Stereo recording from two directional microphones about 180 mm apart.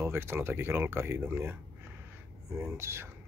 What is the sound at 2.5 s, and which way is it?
Speech, 10° right (ahead or behind).